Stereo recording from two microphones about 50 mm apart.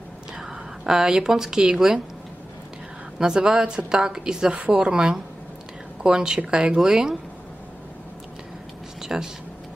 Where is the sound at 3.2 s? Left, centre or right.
Centre.